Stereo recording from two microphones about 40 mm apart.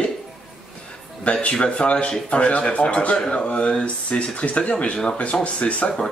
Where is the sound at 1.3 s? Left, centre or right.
Left.